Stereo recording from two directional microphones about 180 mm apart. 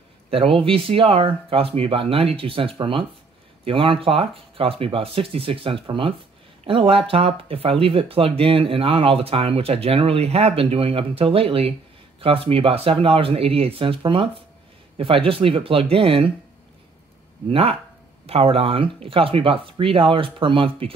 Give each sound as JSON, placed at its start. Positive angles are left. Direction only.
{"t": 0.3, "sound": "speech", "side_deg": -30}
{"t": 17.5, "sound": "speech", "side_deg": -30}